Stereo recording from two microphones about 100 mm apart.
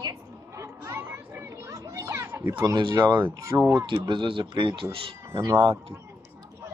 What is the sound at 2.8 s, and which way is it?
Speech, 50° right (ahead or behind).